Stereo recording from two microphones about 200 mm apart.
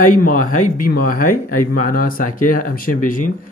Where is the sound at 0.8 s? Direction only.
45° left (ahead or behind).